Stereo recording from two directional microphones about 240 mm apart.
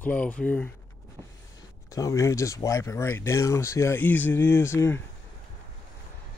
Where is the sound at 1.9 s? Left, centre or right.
Centre.